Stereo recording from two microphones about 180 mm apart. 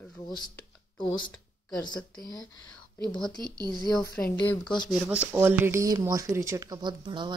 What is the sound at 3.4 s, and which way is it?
Speech, 25° right (ahead or behind).